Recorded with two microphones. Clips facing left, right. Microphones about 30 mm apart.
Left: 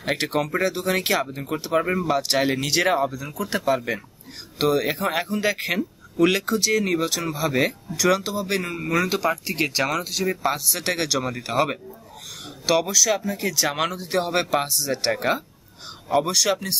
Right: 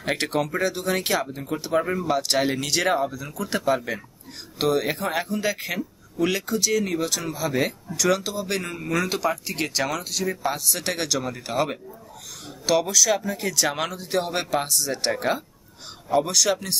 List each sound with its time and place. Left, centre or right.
0.0 s speech: centre
12.8 s speech: centre
13.7 s speech: centre